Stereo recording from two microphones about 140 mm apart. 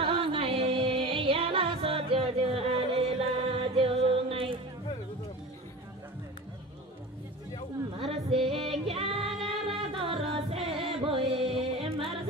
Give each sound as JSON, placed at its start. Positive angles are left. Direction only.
{"t": 0.0, "sound": "music", "side_deg": -40}
{"t": 8.0, "sound": "music", "side_deg": -40}
{"t": 8.4, "sound": "music", "side_deg": 0}
{"t": 8.8, "sound": "music", "side_deg": -40}
{"t": 9.3, "sound": "singing", "side_deg": 0}
{"t": 9.9, "sound": "music", "side_deg": -40}